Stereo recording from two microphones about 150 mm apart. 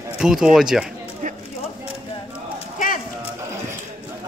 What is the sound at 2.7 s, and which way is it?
Clip-clop, 60° left (ahead or behind).